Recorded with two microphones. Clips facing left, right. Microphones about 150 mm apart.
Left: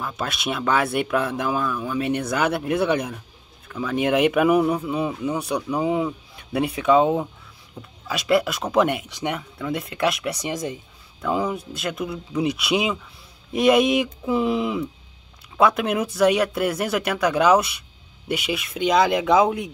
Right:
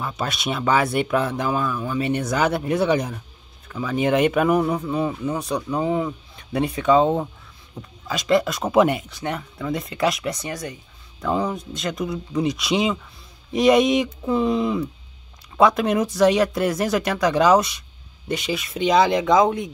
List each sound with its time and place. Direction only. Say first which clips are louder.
0.0 s speech: right 1 dB; centre (ahead or behind)
7.8 s speech: right 2 dB; 10° right (ahead or behind)
8.1 s speech: right 1 dB; 5° left (ahead or behind)
9.1 s speech: left 1 dB; 15° left (ahead or behind)
9.6 s speech: right 2 dB; centre (ahead or behind)
10.4 s speech: left 3 dB; 20° left (ahead or behind)
11.2 s speech: even; 5° left (ahead or behind)